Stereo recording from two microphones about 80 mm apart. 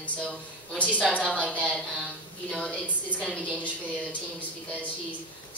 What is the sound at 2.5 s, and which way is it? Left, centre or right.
Speech, centre.